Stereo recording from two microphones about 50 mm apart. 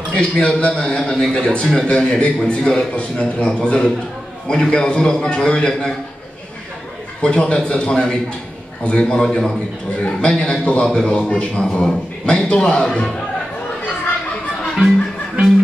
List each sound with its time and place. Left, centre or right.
0.1 s a man's voice: centre
7.2 s a man's voice: left